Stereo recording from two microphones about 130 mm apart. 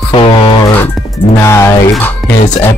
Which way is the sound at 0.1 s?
40° left (ahead or behind).